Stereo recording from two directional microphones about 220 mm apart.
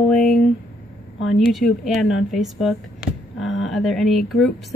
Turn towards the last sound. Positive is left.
turn(degrees=0)  # may be behind; listen again after turning